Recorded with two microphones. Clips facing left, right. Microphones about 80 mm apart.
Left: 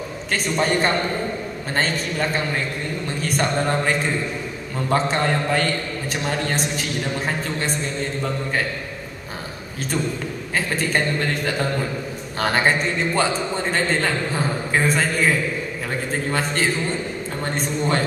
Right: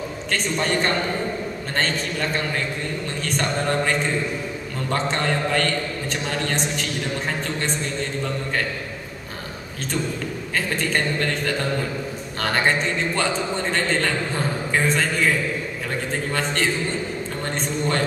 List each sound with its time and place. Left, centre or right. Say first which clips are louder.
0.3 s a man's voice: left 2 dB; centre
10.5 s a man's voice: left 2 dB; centre